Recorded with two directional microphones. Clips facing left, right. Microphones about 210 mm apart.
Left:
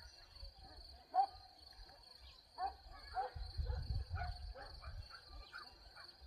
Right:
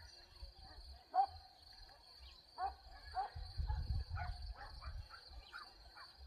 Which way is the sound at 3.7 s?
40° left (ahead or behind).